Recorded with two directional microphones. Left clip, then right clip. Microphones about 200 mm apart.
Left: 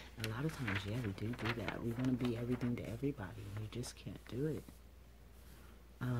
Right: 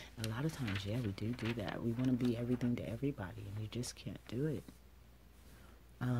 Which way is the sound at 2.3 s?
35° right (ahead or behind).